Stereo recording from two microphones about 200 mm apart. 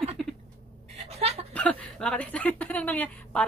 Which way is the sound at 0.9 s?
30° right (ahead or behind).